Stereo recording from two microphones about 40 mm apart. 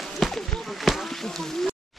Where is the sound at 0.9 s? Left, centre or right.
Centre.